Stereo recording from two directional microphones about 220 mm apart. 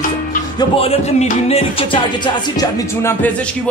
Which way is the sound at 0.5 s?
25° left (ahead or behind).